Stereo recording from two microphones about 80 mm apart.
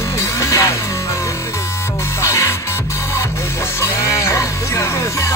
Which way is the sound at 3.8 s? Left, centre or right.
Left.